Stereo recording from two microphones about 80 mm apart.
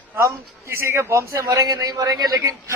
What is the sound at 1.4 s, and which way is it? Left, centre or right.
Speech, right.